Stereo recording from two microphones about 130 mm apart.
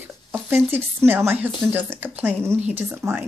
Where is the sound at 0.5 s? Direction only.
15° right (ahead or behind).